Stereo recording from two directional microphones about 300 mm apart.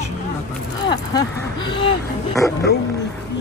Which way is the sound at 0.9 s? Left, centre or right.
Centre.